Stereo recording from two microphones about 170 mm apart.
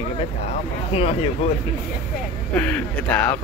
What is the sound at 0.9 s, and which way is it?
Speech, 35° left (ahead or behind).